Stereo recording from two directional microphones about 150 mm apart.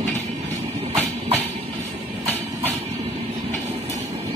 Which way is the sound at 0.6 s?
40° right (ahead or behind).